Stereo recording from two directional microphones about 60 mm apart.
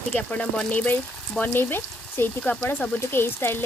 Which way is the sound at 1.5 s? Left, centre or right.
Left.